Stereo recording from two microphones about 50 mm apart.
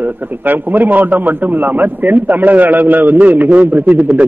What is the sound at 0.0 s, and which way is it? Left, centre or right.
A man's voice, right.